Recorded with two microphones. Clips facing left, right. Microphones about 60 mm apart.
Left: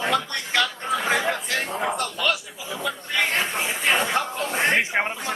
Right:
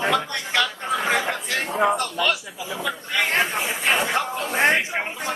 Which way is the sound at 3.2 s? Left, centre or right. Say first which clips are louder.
Right 2 dB; centre.